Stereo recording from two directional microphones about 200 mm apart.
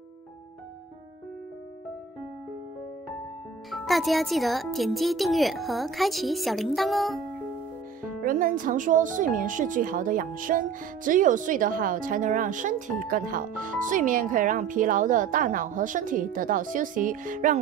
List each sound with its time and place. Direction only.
3.7 s a woman's voice: centre (ahead or behind)
8.0 s speech: 45° right (ahead or behind)